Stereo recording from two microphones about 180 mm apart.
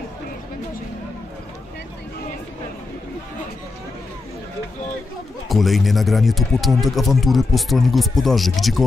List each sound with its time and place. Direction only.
5.5 s speech: centre (ahead or behind)